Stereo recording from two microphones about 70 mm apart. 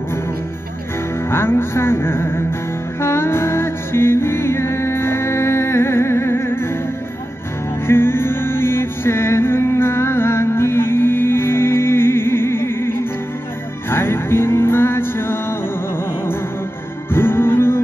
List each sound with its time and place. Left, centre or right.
1.3 s music: left
7.8 s music: left
17.1 s music: left